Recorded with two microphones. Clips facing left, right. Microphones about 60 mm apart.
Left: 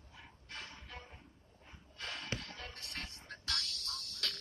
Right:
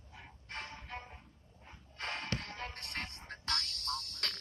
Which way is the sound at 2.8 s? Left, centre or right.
Right.